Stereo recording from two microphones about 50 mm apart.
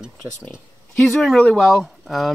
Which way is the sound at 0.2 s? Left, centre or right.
Right.